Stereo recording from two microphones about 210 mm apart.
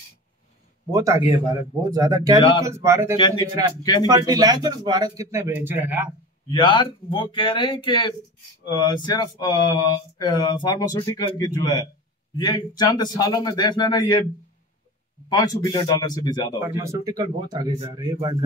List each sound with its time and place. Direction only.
0.9 s speech: 15° right (ahead or behind)
3.2 s speech: 20° left (ahead or behind)
4.1 s speech: 20° right (ahead or behind)
6.5 s speech: 20° left (ahead or behind)
15.2 s speech: 20° left (ahead or behind)
16.5 s speech: 15° right (ahead or behind)